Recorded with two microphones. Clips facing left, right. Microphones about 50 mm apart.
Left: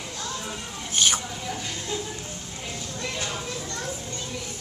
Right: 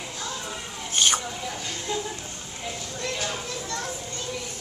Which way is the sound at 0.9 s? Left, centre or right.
Centre.